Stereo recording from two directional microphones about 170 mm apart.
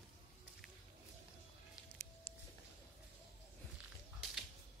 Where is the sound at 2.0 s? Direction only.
15° left (ahead or behind).